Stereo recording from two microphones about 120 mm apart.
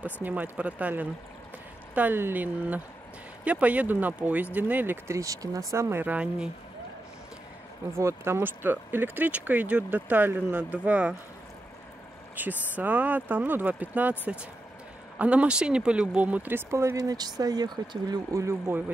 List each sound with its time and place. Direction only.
0.0 s speech: 15° right (ahead or behind)
8.0 s speech: 25° right (ahead or behind)
12.4 s speech: 15° right (ahead or behind)